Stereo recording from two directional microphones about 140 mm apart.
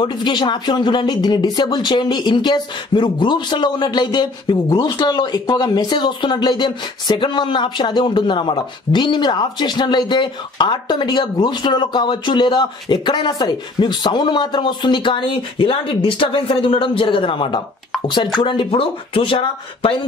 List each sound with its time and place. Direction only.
0.0 s speech: 30° left (ahead or behind)